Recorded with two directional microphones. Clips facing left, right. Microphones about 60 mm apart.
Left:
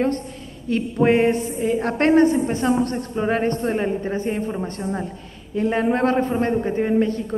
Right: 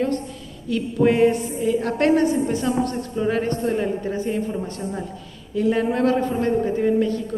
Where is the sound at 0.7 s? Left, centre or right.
Left.